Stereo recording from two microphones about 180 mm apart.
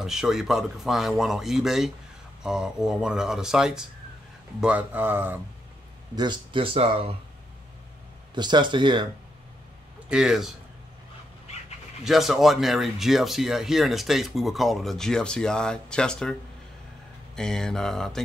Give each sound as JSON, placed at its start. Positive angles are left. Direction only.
{"t": 0.0, "sound": "speech", "side_deg": 0}
{"t": 6.1, "sound": "speech", "side_deg": -25}
{"t": 8.4, "sound": "speech", "side_deg": -25}
{"t": 10.0, "sound": "a man's voice", "side_deg": -5}
{"t": 12.0, "sound": "speech", "side_deg": 0}
{"t": 17.4, "sound": "speech", "side_deg": 5}